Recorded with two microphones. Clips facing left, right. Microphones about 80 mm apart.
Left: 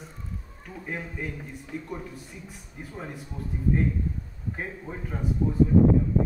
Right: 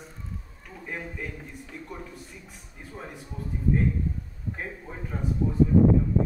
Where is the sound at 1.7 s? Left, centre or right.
Centre.